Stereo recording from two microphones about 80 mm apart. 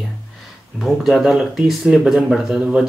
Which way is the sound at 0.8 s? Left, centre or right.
Centre.